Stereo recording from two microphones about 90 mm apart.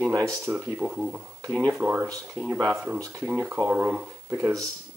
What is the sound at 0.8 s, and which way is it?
Speech, 15° right (ahead or behind).